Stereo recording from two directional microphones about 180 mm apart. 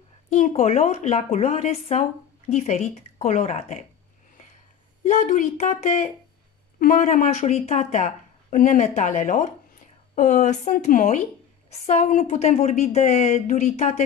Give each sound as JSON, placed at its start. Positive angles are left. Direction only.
{"t": 0.3, "sound": "speech", "side_deg": 40}
{"t": 5.0, "sound": "speech", "side_deg": 40}